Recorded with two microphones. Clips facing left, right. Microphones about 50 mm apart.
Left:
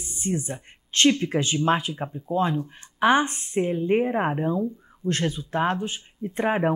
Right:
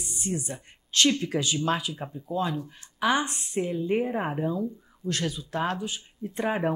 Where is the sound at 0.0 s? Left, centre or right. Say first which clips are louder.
Left 4 dB; left.